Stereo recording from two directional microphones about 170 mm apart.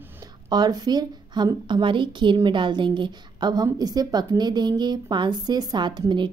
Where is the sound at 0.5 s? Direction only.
25° right (ahead or behind).